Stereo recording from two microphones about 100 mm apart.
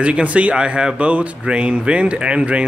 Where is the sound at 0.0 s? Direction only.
10° right (ahead or behind).